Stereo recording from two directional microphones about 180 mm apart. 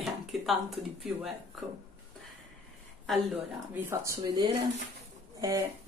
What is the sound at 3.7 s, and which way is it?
Speech, 15° right (ahead or behind).